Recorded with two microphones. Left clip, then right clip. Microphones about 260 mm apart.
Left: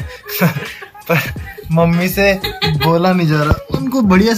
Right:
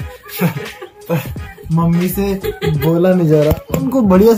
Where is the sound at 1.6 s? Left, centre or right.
Centre.